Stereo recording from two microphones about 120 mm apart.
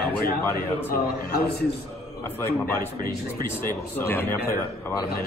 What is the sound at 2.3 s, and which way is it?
Speech, 15° left (ahead or behind).